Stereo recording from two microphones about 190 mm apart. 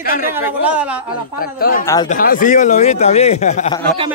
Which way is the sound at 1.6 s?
45° left (ahead or behind).